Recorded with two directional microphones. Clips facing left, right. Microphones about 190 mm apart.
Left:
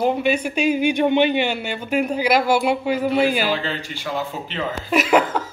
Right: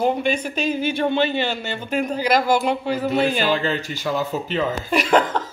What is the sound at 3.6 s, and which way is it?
Speech, 45° right (ahead or behind).